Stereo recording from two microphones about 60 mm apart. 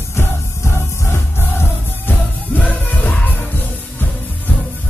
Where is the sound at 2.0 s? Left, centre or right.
Left.